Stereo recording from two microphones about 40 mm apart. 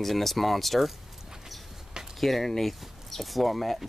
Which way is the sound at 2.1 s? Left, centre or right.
Centre.